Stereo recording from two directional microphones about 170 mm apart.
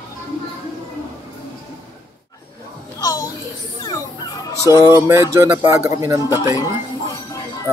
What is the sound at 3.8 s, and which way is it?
Fowl, 20° left (ahead or behind).